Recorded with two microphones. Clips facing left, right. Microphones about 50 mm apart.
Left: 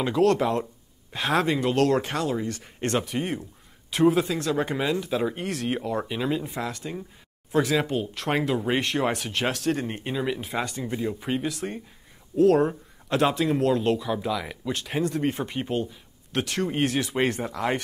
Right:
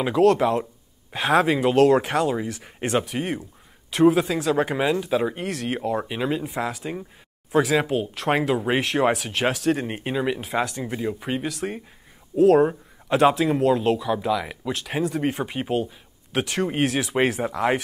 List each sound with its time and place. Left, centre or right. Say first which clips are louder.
0.0 s speech: right 3 dB; centre
6.8 s speech: right 3 dB; centre
7.5 s speech: right 3 dB; centre
9.8 s speech: right 3 dB; centre
10.4 s speech: right 4 dB; centre